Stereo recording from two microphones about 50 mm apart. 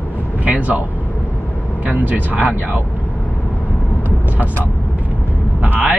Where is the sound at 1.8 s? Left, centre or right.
Right.